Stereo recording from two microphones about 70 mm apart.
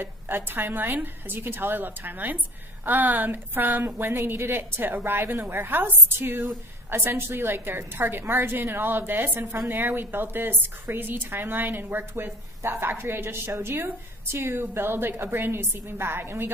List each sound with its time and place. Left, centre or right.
0.0 s a woman's voice: right